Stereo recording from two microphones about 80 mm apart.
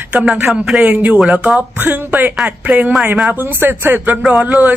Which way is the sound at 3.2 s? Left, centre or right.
Right.